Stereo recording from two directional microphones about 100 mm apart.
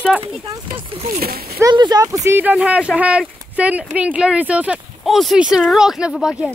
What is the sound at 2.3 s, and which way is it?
Speech, 15° right (ahead or behind).